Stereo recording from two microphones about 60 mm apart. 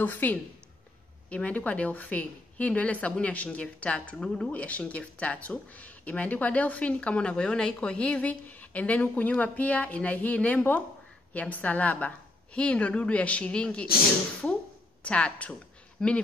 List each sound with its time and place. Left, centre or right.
0.0 s a woman's voice: left
15.0 s speech: centre